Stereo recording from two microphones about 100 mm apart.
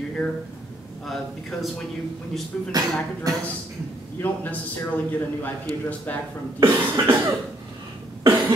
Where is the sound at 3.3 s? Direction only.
35° right (ahead or behind).